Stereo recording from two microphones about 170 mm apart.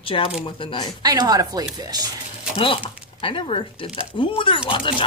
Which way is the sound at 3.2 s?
30° left (ahead or behind).